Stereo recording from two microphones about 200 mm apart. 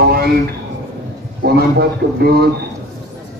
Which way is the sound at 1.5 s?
50° right (ahead or behind).